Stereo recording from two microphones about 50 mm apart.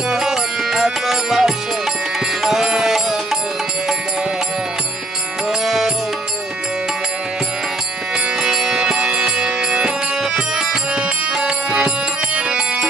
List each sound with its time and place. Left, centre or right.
0.1 s music: centre
8.4 s music: centre